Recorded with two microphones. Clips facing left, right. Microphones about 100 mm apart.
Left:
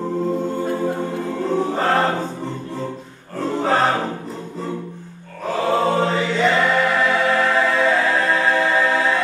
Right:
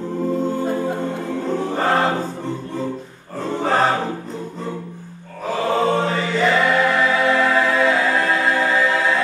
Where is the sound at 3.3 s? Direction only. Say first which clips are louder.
Left 1 dB; centre (ahead or behind).